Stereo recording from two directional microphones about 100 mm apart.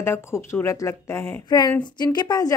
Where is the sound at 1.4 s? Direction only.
45° left (ahead or behind).